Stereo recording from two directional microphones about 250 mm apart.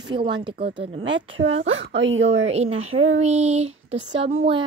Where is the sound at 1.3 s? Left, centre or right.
Right.